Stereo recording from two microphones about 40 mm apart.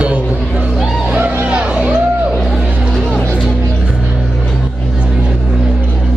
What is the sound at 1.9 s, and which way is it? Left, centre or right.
Music, right.